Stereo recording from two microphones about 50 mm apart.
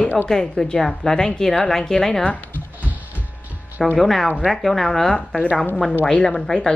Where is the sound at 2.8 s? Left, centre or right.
Right.